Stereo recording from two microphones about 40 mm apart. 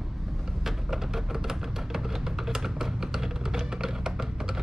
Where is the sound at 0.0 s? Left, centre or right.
Centre.